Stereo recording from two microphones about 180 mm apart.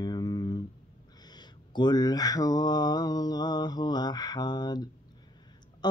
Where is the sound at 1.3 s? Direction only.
25° left (ahead or behind).